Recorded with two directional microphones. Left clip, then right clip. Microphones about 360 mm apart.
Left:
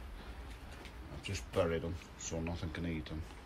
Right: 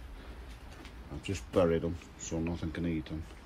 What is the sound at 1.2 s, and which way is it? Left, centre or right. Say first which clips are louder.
Speech: right 6 dB; centre.